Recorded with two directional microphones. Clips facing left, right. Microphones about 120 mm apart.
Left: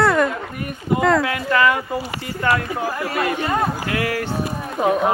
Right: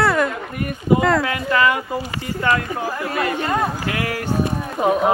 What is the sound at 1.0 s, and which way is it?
Speech, centre (ahead or behind).